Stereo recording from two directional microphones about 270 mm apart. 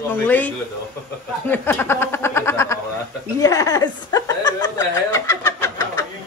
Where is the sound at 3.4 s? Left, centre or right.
Centre.